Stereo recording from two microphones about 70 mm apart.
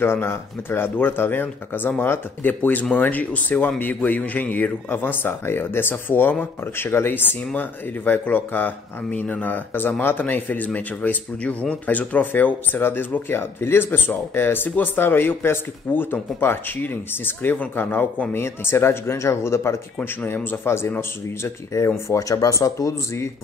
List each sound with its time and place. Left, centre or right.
0.0 s speech: left